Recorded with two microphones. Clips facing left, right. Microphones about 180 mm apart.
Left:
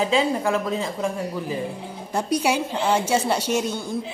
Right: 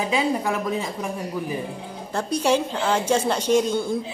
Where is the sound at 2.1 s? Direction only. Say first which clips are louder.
Right 1 dB; 10° left (ahead or behind).